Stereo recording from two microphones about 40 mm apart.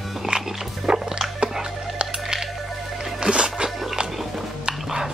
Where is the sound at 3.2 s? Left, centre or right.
Centre.